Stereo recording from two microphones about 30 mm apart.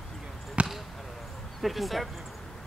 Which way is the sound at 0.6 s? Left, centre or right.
Right.